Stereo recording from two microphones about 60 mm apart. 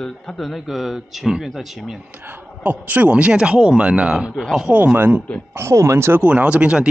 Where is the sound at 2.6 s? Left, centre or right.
Right.